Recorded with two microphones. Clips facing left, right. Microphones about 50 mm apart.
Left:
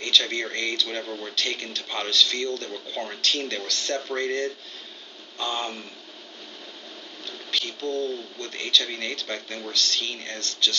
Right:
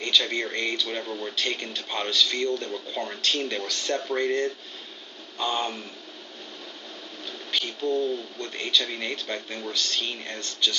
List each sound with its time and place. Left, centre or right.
0.0 s speech: centre
0.8 s speech: centre
1.3 s speech: centre
7.5 s speech: centre